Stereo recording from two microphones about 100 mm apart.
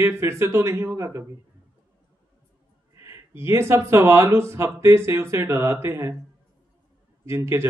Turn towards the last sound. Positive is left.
turn(degrees=-25)  # may be behind; listen again after turning